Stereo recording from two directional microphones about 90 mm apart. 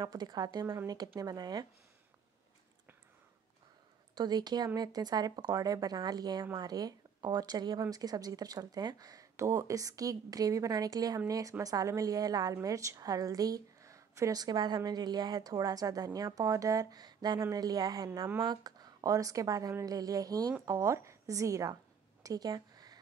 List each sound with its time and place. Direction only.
0.0 s speech: 50° right (ahead or behind)
4.1 s speech: 50° right (ahead or behind)
22.2 s a sound: 45° right (ahead or behind)